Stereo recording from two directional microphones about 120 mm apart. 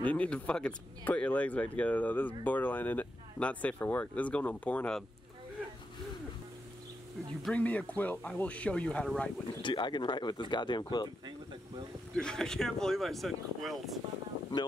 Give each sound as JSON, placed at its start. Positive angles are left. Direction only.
{"t": 0.0, "sound": "speech", "side_deg": 10}
{"t": 7.4, "sound": "speech", "side_deg": 10}
{"t": 9.6, "sound": "speech", "side_deg": 40}
{"t": 12.2, "sound": "speech", "side_deg": 5}